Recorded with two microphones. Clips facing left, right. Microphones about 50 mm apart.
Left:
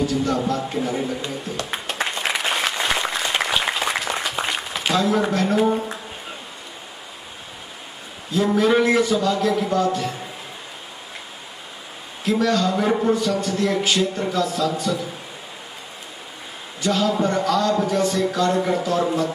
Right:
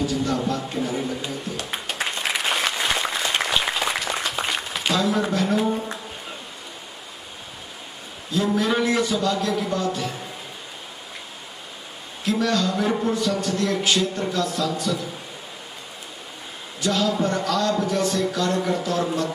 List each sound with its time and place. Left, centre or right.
0.0 s a man's voice: centre
1.6 s applause: centre
8.3 s a man's voice: centre
12.3 s a man's voice: centre
16.9 s a man's voice: centre